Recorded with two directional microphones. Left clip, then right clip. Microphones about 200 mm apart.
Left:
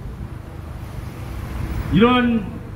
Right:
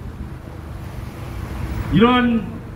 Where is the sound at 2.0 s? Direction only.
20° left (ahead or behind).